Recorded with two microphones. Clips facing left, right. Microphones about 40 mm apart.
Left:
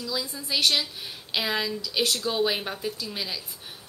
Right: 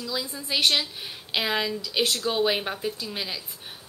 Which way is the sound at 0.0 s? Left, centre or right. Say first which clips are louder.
Even; centre.